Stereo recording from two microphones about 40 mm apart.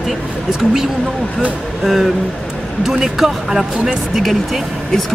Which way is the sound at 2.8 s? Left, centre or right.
Centre.